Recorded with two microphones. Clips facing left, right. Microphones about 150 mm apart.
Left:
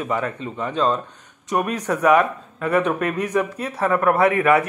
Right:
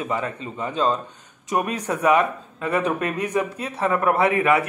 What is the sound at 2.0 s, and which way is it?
Speech, 25° right (ahead or behind).